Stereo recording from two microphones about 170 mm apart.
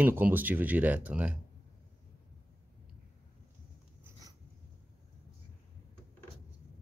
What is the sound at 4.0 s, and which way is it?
Writing, 20° right (ahead or behind).